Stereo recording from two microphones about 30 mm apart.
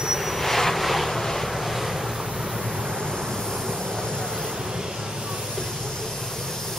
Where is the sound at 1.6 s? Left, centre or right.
Centre.